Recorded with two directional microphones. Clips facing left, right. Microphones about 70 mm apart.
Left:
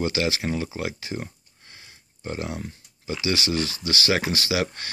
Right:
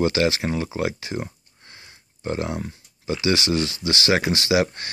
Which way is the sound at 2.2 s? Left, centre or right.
Right.